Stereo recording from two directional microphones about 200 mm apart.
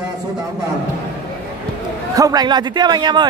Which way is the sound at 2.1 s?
20° right (ahead or behind).